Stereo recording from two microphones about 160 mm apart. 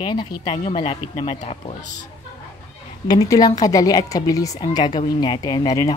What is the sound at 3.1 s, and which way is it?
Speech, 25° left (ahead or behind).